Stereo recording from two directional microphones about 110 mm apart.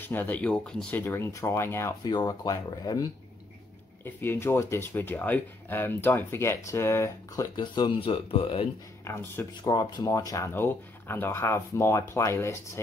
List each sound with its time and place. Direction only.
0.0 s speech: 15° left (ahead or behind)
2.0 s speech: 40° left (ahead or behind)
4.0 s speech: 20° left (ahead or behind)
7.6 s speech: 45° left (ahead or behind)
9.0 s speech: 20° left (ahead or behind)
9.6 s speech: 40° left (ahead or behind)
10.0 s speech: 30° left (ahead or behind)